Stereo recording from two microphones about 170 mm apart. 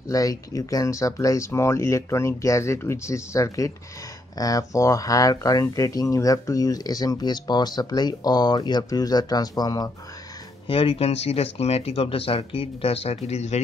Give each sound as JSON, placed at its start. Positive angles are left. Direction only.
{"t": 0.1, "sound": "speech", "side_deg": 20}
{"t": 10.7, "sound": "speech", "side_deg": 35}